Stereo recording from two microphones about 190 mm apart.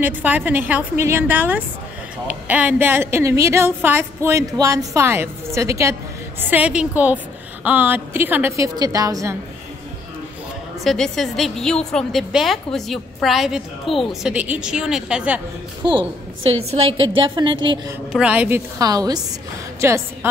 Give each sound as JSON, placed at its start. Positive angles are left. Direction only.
{"t": 0.0, "sound": "a woman's voice", "side_deg": -10}
{"t": 10.8, "sound": "a woman's voice", "side_deg": 0}
{"t": 15.8, "sound": "a woman's voice", "side_deg": -25}
{"t": 17.0, "sound": "a woman's voice", "side_deg": -25}
{"t": 18.1, "sound": "a woman's voice", "side_deg": -5}
{"t": 18.8, "sound": "a woman's voice", "side_deg": -20}